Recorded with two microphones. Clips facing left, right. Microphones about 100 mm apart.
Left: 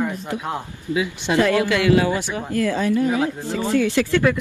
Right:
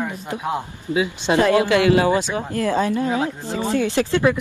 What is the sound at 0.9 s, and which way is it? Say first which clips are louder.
A man's voice: right 2 dB; 25° right (ahead or behind).